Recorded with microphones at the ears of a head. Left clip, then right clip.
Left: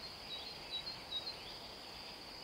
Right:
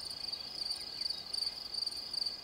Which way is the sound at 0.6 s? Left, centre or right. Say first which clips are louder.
Right 6 dB; right.